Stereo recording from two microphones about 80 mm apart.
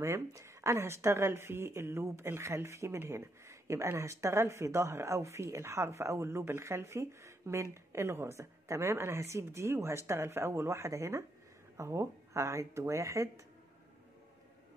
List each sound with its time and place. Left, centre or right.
0.0 s speech: right